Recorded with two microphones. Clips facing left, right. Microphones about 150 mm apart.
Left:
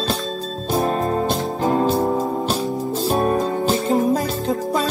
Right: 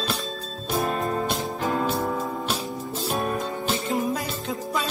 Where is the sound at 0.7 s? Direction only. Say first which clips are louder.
Left 5 dB; 35° left (ahead or behind).